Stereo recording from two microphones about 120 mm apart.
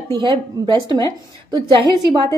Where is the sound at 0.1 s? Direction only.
35° right (ahead or behind).